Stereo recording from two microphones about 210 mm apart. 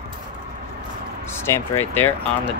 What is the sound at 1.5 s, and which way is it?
Speech, 10° left (ahead or behind).